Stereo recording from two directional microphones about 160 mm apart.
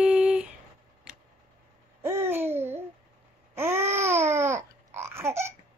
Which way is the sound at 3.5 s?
15° right (ahead or behind).